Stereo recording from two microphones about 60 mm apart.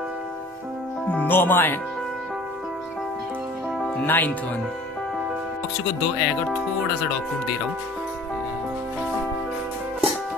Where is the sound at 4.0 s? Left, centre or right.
Left.